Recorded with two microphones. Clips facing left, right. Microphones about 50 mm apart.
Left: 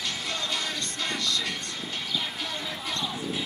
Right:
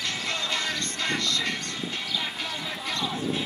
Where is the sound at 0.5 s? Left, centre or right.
Right.